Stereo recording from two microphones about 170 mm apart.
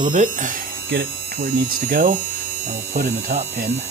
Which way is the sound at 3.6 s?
75° right (ahead or behind).